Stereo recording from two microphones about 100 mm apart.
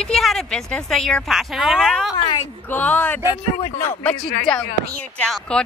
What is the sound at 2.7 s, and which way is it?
Speech, 15° left (ahead or behind).